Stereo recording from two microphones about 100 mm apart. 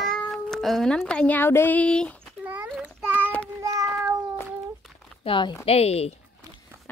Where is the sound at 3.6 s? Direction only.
35° right (ahead or behind).